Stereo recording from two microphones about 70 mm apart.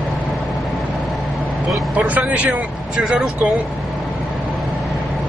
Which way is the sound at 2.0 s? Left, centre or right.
Centre.